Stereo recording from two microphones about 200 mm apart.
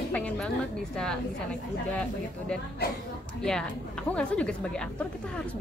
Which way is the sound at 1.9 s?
5° left (ahead or behind).